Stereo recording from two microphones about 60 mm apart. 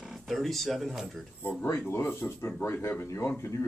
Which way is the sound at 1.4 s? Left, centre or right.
Left.